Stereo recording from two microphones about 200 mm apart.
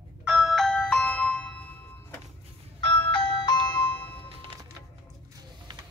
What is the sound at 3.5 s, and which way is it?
Music, 20° left (ahead or behind).